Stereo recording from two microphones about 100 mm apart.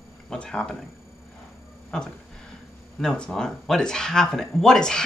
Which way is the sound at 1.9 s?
5° left (ahead or behind).